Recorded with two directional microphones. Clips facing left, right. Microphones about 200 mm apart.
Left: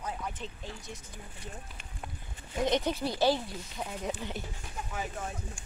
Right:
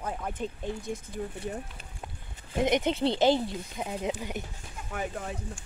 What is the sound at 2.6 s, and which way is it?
Speech, 20° right (ahead or behind).